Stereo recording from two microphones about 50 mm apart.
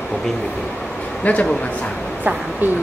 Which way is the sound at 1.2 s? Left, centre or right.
Left.